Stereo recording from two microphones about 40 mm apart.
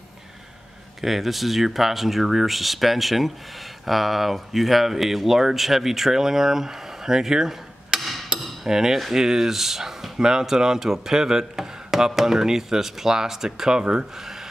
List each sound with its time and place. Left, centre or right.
1.0 s speech: centre
8.3 s cutlery: right
8.6 s speech: centre